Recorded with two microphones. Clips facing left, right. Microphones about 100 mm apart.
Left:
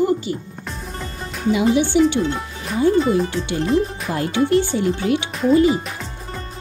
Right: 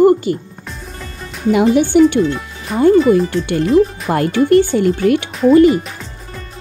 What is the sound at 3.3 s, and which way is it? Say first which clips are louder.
Speech: right 6 dB; 55° right (ahead or behind).